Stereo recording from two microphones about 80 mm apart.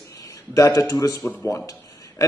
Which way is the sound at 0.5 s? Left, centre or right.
Left.